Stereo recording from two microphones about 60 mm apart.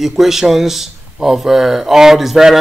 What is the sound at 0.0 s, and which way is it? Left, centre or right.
Speech, centre.